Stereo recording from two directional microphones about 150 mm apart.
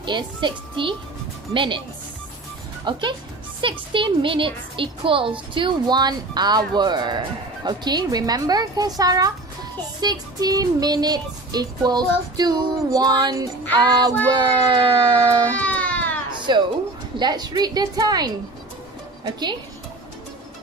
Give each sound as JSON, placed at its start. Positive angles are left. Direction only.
{"t": 0.0, "sound": "speech", "side_deg": -30}
{"t": 2.8, "sound": "speech", "side_deg": -30}
{"t": 15.5, "sound": "baby cry", "side_deg": 10}
{"t": 16.3, "sound": "a sound", "side_deg": -30}
{"t": 17.2, "sound": "speech", "side_deg": -30}